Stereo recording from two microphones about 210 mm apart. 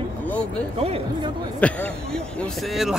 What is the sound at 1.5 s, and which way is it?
Speech, 5° left (ahead or behind).